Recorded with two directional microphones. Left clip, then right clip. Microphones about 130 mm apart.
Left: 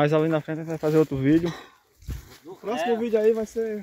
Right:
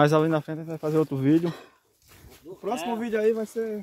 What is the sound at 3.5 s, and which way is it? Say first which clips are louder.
Speech: left 2 dB; 10° right (ahead or behind).